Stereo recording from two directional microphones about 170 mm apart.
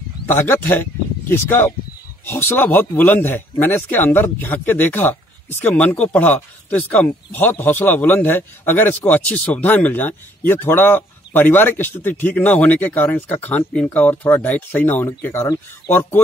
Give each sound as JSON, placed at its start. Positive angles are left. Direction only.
{"t": 0.3, "sound": "speech", "side_deg": 15}